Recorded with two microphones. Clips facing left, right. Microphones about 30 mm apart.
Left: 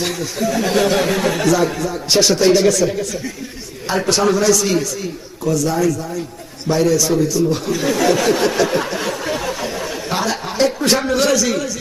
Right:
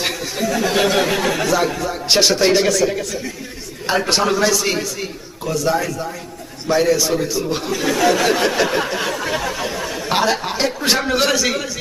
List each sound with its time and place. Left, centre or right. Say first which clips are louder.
0.0 s speech: left 1 dB; centre
0.5 s speech: left 1 dB; centre
1.9 s speech: right 1 dB; right
3.8 s a man's voice: left 1 dB; right
7.7 s speech: right 2 dB; centre
8.8 s a sound: even; centre
10.0 s speech: right 4 dB; right